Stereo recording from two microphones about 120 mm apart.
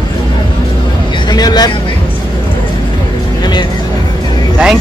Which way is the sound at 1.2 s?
35° left (ahead or behind).